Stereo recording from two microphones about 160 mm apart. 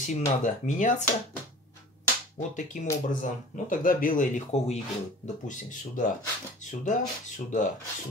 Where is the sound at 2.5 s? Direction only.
50° left (ahead or behind).